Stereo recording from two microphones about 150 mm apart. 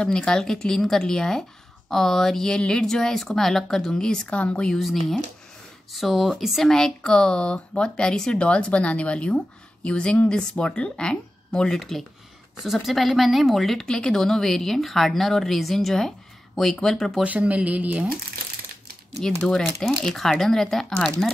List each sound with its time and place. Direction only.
0.0 s speech: 5° left (ahead or behind)
17.2 s speech: 10° right (ahead or behind)
19.4 s speech: 5° left (ahead or behind)